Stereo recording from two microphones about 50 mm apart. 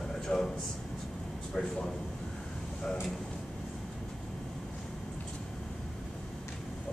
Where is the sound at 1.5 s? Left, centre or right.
Centre.